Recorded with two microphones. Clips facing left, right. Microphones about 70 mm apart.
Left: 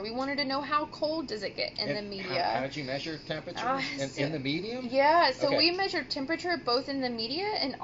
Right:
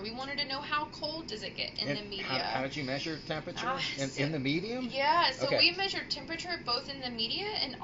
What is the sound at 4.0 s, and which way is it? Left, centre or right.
Speech, centre.